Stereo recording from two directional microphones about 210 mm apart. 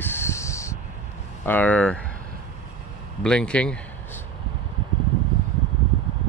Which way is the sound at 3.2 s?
5° left (ahead or behind).